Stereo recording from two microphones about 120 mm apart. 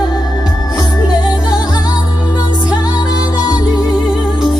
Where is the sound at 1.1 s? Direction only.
35° left (ahead or behind).